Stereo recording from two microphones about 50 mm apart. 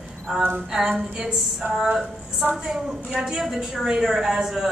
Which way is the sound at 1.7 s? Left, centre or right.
Centre.